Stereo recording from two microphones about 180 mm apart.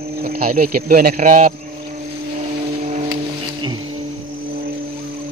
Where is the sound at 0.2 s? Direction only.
55° right (ahead or behind).